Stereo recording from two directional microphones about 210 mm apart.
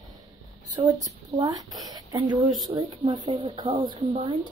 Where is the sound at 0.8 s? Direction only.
15° right (ahead or behind).